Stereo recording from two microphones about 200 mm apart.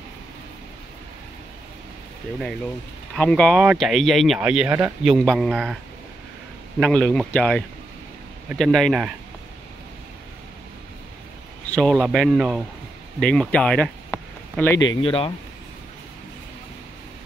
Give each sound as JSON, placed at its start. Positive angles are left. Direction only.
{"t": 3.2, "sound": "speech", "side_deg": 5}
{"t": 6.8, "sound": "speech", "side_deg": 5}
{"t": 11.7, "sound": "speech", "side_deg": 5}
{"t": 15.0, "sound": "speech", "side_deg": 25}